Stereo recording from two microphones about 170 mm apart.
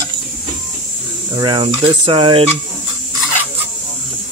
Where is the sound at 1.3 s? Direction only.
25° right (ahead or behind).